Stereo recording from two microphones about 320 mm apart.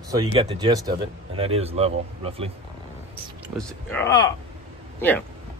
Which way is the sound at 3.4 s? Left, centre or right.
Centre.